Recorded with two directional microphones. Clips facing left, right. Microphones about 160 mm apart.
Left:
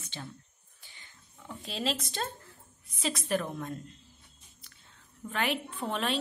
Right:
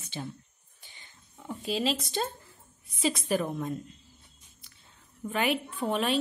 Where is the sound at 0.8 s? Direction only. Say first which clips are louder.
Right 1 dB; 20° right (ahead or behind).